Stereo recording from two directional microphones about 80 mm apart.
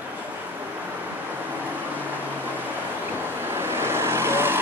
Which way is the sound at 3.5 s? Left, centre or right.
Right.